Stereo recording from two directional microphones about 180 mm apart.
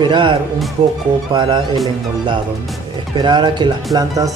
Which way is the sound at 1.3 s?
25° right (ahead or behind).